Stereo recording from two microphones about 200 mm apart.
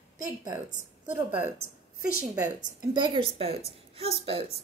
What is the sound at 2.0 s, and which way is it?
Speech, 45° left (ahead or behind).